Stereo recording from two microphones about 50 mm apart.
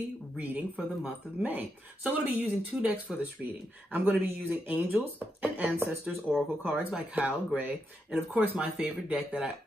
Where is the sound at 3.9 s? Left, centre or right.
Right.